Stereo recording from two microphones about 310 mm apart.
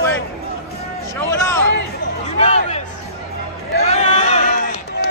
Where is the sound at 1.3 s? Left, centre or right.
Centre.